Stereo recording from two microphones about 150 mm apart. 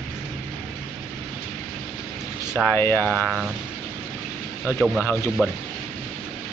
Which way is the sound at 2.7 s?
15° left (ahead or behind).